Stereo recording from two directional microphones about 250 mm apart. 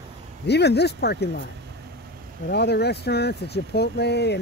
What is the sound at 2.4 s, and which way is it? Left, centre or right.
Speech, left.